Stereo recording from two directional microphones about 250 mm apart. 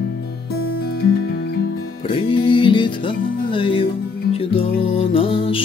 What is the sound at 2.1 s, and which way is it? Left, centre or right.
Music, centre.